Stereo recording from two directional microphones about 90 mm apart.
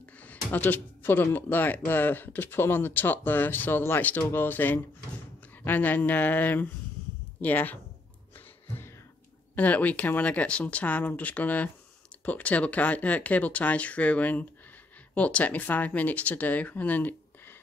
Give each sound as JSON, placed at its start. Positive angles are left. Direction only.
{"t": 0.2, "sound": "speech", "side_deg": 20}
{"t": 9.6, "sound": "speech", "side_deg": 15}